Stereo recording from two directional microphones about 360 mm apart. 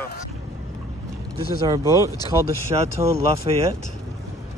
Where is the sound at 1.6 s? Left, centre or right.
Centre.